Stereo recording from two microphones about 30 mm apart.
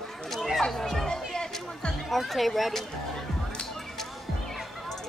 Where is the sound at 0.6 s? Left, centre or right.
Centre.